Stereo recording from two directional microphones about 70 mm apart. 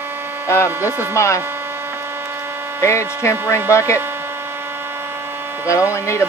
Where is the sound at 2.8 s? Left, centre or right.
Left.